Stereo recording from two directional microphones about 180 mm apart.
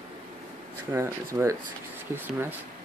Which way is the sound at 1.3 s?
20° right (ahead or behind).